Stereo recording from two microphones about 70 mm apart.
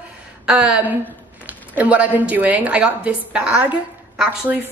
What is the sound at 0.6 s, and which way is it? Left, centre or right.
A woman's voice, centre.